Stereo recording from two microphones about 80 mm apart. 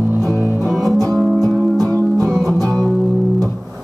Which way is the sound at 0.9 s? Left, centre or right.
Right.